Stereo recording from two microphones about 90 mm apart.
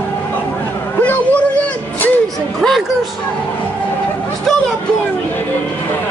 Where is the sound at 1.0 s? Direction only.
15° left (ahead or behind).